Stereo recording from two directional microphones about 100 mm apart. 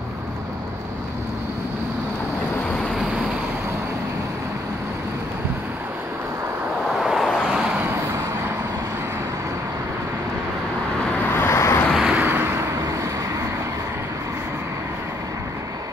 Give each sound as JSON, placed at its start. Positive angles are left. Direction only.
{"t": 7.0, "sound": "vehicle", "side_deg": 0}
{"t": 11.3, "sound": "vehicle", "side_deg": 25}
{"t": 12.0, "sound": "vehicle", "side_deg": -15}